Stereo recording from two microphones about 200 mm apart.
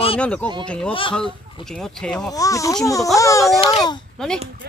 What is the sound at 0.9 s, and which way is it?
Speech, 25° left (ahead or behind).